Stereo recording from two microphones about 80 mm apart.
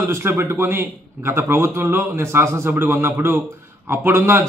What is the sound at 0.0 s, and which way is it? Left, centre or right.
A man's voice, right.